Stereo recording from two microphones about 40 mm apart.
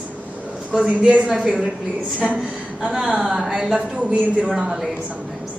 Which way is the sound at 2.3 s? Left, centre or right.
Centre.